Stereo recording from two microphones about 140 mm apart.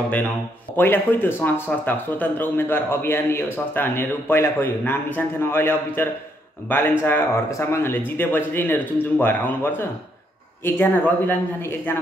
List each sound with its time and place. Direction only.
0.7 s speech: 15° left (ahead or behind)